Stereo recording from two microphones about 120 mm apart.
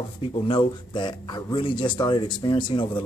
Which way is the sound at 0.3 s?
45° left (ahead or behind).